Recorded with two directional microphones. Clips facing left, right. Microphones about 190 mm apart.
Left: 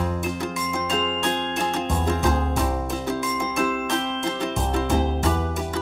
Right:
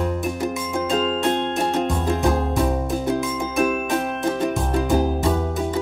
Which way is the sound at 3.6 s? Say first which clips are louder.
Right 5 dB; 20° right (ahead or behind).